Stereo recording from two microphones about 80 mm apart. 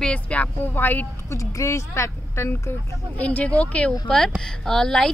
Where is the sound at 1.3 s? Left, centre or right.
Left.